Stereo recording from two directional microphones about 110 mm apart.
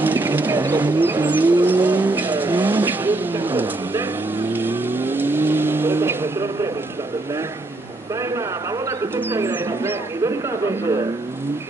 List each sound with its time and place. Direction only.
0.0 s vehicle: 15° right (ahead or behind)
9.1 s speech: 20° right (ahead or behind)